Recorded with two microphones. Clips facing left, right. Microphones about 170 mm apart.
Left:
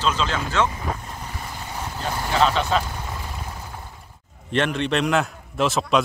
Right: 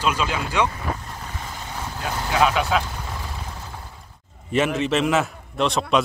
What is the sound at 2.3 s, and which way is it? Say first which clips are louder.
Speech: even; 10° right (ahead or behind).